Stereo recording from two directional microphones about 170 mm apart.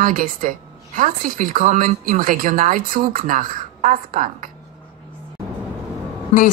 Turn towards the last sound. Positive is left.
turn(degrees=50)  # may be behind; listen again after turning